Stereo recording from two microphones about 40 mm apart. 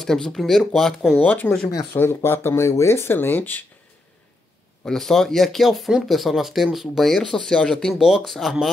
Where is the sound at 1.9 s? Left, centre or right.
Left.